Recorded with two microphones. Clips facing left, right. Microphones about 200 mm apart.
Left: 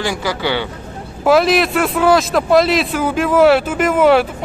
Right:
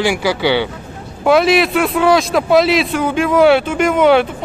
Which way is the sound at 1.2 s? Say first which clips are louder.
Right 1 dB; centre (ahead or behind).